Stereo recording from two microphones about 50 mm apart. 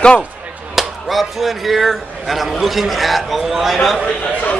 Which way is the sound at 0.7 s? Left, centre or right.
Centre.